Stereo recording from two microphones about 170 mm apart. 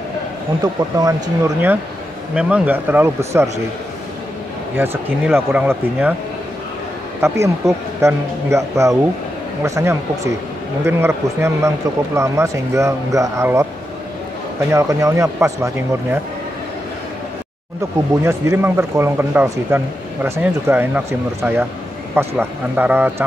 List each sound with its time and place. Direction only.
0.6 s speech: 20° right (ahead or behind)
4.7 s speech: 10° right (ahead or behind)
7.2 s speech: 15° right (ahead or behind)
14.7 s speech: 15° right (ahead or behind)
18.2 s speech: 15° right (ahead or behind)